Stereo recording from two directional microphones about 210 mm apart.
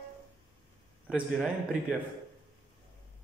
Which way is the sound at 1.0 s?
5° right (ahead or behind).